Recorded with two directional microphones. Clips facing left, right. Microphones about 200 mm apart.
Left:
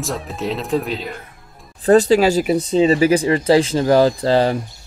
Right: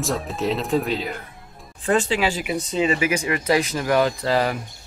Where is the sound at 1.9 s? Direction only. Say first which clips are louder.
Left 9 dB; 40° left (ahead or behind).